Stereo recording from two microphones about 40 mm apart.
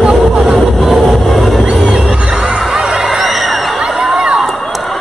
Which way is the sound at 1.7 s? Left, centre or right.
Centre.